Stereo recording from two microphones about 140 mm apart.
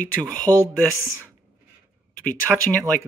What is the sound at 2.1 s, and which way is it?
Speech, 85° left.